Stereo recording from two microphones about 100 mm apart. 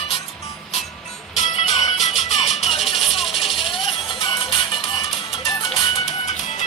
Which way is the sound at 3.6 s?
60° left (ahead or behind).